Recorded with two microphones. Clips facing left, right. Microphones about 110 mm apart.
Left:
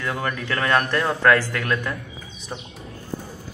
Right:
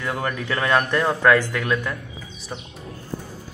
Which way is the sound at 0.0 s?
10° right (ahead or behind).